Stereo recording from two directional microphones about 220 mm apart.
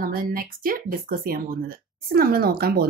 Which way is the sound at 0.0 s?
40° right (ahead or behind).